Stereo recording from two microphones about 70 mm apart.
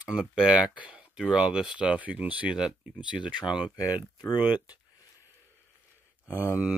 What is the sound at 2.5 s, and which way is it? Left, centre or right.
Speech, centre.